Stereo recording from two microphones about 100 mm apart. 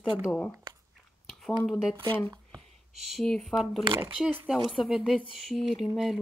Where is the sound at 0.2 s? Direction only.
10° left (ahead or behind).